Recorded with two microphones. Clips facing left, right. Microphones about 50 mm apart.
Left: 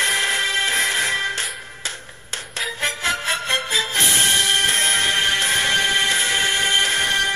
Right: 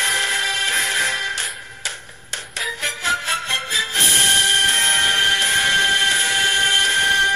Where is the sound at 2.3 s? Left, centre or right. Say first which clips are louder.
Right 1 dB; left.